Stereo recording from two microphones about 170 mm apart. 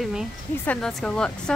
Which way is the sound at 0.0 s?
Centre (ahead or behind).